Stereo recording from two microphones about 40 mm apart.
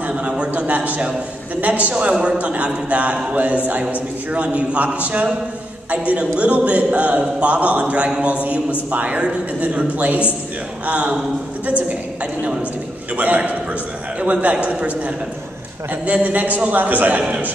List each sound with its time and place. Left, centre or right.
0.1 s a sound: right
1.6 s a capella: right
13.1 s a capella: right
16.7 s a man's voice: right